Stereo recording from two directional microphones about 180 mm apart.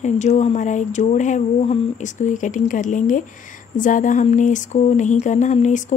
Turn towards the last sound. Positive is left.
turn(degrees=45)  # may be behind; listen again after turning